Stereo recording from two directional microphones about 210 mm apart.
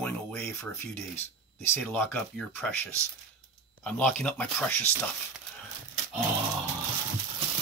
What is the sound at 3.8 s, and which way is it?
Speech, 5° left (ahead or behind).